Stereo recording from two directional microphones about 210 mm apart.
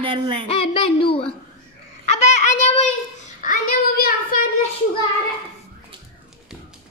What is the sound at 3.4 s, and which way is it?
Child singing, 40° left (ahead or behind).